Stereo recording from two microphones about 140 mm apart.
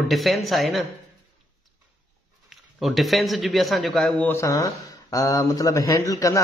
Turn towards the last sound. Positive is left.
turn(degrees=25)  # may be behind; listen again after turning